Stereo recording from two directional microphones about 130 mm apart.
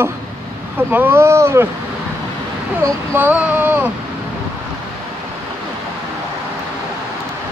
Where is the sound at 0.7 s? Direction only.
15° right (ahead or behind).